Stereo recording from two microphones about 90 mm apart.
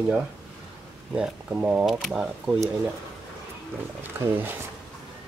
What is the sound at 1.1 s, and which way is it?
Speech, 10° right (ahead or behind).